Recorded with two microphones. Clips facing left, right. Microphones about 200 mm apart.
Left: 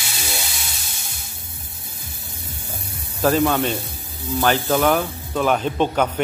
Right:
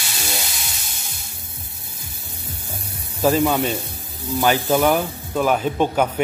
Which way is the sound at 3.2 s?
10° right (ahead or behind).